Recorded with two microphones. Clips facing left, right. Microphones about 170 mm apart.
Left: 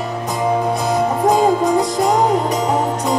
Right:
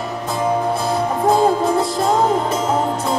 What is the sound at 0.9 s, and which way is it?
Music, 15° left (ahead or behind).